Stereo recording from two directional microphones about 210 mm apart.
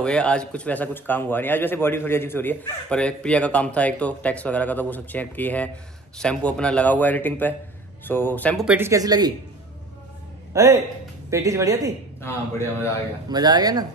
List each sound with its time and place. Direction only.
0.0 s speech: 5° left (ahead or behind)
8.6 s speech: 10° right (ahead or behind)
10.5 s a man's voice: 15° right (ahead or behind)
12.2 s speech: 10° left (ahead or behind)
13.3 s speech: 20° right (ahead or behind)